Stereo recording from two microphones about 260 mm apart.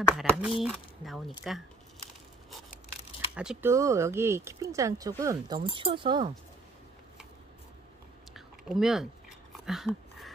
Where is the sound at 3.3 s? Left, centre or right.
Centre.